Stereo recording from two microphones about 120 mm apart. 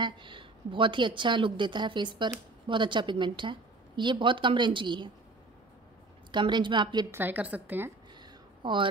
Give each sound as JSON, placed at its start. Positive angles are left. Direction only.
{"t": 0.0, "sound": "a woman's voice", "side_deg": -40}
{"t": 6.3, "sound": "a woman's voice", "side_deg": -40}
{"t": 7.1, "sound": "a woman's voice", "side_deg": -15}
{"t": 8.2, "sound": "a sound", "side_deg": -40}